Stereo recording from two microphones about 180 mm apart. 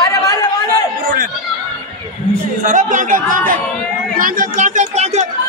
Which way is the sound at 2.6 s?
45° right (ahead or behind).